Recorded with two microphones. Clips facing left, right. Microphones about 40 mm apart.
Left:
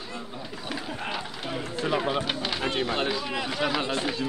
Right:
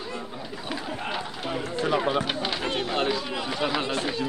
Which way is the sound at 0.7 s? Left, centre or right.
Centre.